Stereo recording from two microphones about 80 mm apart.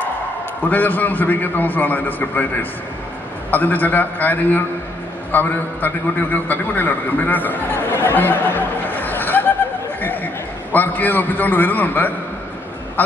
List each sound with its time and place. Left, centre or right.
0.7 s a man's voice: left
3.4 s a man's voice: left